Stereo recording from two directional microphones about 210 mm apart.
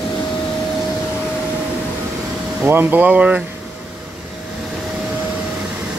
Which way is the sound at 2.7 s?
10° right (ahead or behind).